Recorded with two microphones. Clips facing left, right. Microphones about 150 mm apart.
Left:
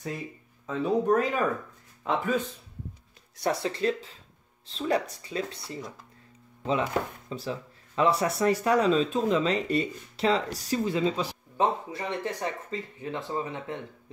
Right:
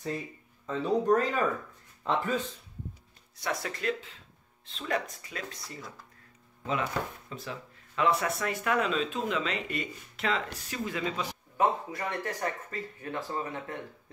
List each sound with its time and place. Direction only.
0.7 s speech: 5° left (ahead or behind)
3.4 s speech: 30° left (ahead or behind)